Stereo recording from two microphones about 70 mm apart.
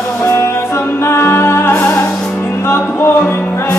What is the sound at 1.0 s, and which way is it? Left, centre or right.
Music, left.